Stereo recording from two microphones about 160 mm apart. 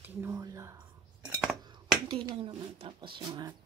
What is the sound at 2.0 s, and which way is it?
Speech, 30° right (ahead or behind).